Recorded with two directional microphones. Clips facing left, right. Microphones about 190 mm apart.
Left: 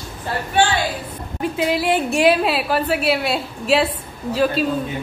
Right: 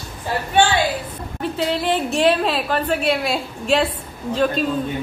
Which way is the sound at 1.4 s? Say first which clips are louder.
Left 2 dB; 10° left (ahead or behind).